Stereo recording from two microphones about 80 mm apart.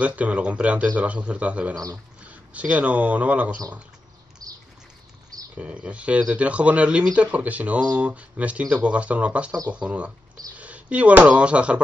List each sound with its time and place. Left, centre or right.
0.0 s speech: centre
4.4 s a sound: right
5.6 s speech: centre